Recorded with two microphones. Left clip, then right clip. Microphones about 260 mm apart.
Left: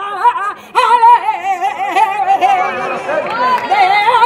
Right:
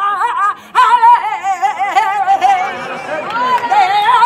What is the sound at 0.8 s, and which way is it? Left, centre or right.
Music, right.